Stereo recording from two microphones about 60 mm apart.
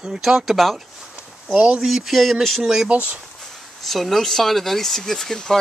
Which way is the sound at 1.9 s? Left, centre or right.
Centre.